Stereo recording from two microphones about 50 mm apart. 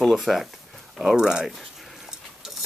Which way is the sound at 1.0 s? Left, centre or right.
Centre.